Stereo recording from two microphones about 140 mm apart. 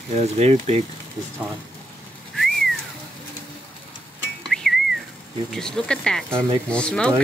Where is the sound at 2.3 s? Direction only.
Centre (ahead or behind).